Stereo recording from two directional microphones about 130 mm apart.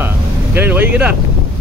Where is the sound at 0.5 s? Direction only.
15° right (ahead or behind).